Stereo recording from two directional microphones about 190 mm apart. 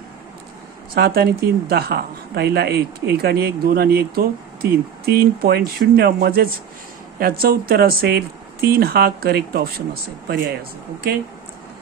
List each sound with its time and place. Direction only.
0.9 s a woman's voice: 55° right (ahead or behind)